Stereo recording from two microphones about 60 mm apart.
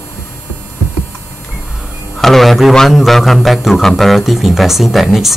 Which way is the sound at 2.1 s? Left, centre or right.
Centre.